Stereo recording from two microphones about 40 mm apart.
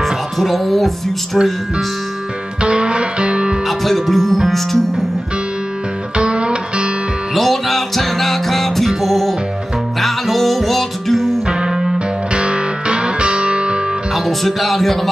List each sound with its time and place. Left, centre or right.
0.0 s speech: centre
2.6 s music: right
3.6 s speech: centre
6.1 s music: right
7.3 s music: centre
11.4 s music: centre
12.3 s music: right
14.1 s speech: centre